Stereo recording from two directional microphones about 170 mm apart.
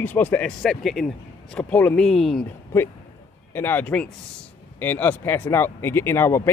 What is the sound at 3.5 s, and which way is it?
Speech, 10° left (ahead or behind).